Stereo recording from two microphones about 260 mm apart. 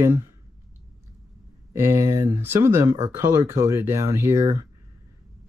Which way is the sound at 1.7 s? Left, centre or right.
Centre.